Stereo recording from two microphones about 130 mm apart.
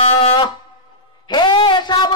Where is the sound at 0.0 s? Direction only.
50° left (ahead or behind).